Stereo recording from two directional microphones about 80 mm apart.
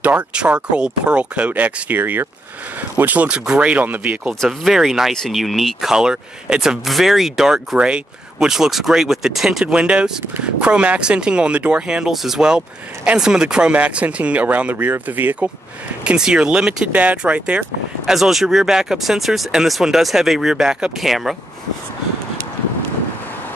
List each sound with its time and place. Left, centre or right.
0.0 s speech: centre
4.5 s speech: centre; by 15.5 s right
16.0 s speech: centre
18.1 s speech: centre